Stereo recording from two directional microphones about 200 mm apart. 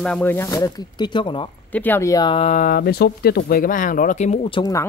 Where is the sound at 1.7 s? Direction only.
10° left (ahead or behind).